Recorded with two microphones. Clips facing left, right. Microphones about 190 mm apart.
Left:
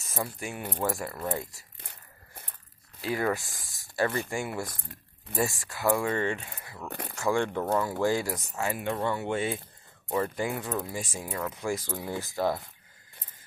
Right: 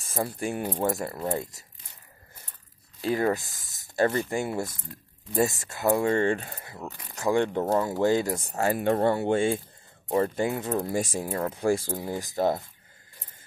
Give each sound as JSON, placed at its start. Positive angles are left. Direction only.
{"t": 0.2, "sound": "speech", "side_deg": -35}
{"t": 0.7, "sound": "speech", "side_deg": -20}
{"t": 1.8, "sound": "a sound", "side_deg": 65}
{"t": 3.0, "sound": "speech", "side_deg": -30}
{"t": 8.5, "sound": "speech", "side_deg": -40}
{"t": 10.7, "sound": "speech", "side_deg": -40}
{"t": 12.2, "sound": "speech", "side_deg": -20}